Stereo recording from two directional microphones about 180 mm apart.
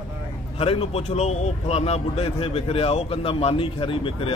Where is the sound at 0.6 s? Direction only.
30° left (ahead or behind).